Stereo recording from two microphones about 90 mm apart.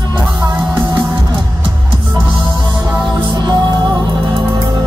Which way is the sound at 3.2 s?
55° right (ahead or behind).